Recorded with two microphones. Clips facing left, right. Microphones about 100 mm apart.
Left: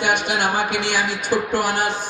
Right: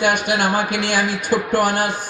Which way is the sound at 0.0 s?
50° right (ahead or behind).